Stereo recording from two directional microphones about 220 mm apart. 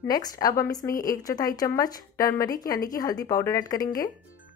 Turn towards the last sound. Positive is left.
turn(degrees=15)  # may be behind; listen again after turning